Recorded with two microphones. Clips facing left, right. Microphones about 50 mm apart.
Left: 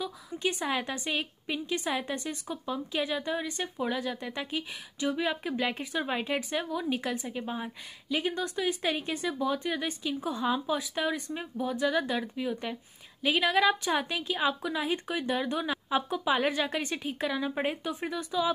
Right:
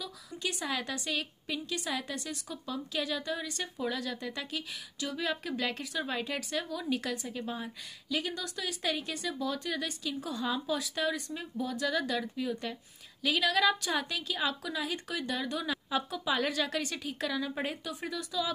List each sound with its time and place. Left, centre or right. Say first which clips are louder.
0.0 s a woman's voice: left 6 dB; left